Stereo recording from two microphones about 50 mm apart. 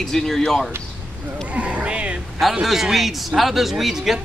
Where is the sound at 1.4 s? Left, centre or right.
Right.